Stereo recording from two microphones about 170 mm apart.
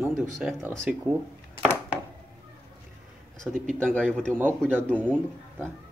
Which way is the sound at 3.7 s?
5° left (ahead or behind).